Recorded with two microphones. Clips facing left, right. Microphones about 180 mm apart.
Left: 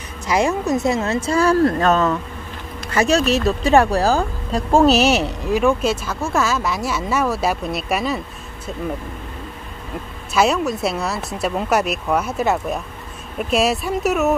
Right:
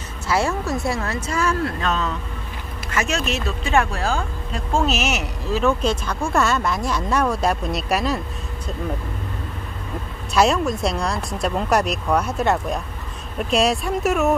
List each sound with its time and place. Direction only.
0.3 s speech: 15° left (ahead or behind); by 2.1 s 50° left (ahead or behind)
2.9 s speech: 35° left (ahead or behind)
5.4 s speech: 15° left (ahead or behind)
10.3 s speech: centre (ahead or behind)